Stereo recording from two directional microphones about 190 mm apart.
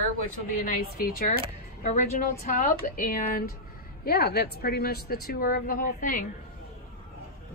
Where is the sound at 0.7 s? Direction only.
50° left (ahead or behind).